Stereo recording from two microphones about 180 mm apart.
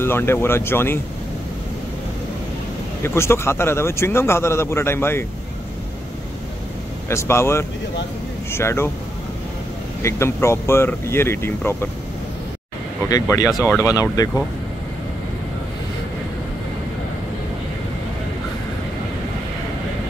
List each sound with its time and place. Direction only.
0.0 s speech: 15° left (ahead or behind)
3.0 s speech: 15° left (ahead or behind)
7.1 s speech: 15° left (ahead or behind)
10.0 s speech: 15° left (ahead or behind)
13.1 s speech: 20° left (ahead or behind)